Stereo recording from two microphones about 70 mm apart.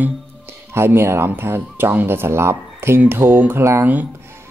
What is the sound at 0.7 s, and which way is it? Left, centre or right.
Speech, right.